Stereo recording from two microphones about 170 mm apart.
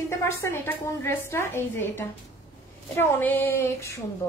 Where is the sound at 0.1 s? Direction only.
15° left (ahead or behind).